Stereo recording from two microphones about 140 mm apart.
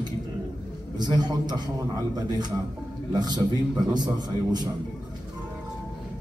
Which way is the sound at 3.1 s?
30° right (ahead or behind).